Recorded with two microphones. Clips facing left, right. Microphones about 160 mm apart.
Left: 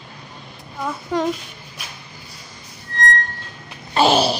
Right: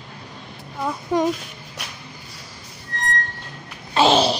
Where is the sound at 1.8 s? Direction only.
70° right (ahead or behind).